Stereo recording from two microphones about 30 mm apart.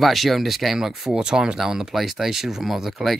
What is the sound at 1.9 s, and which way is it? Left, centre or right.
Speech, centre.